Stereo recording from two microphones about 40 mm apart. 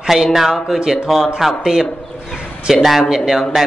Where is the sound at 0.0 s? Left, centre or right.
Centre.